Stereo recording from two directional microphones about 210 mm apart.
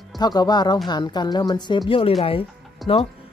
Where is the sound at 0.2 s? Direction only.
20° left (ahead or behind).